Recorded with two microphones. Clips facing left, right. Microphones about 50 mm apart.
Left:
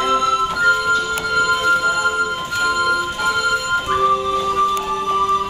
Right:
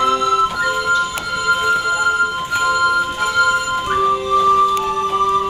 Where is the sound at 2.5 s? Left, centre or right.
Centre.